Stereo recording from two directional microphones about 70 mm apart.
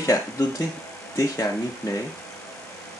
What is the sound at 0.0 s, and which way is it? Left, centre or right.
Speech, left.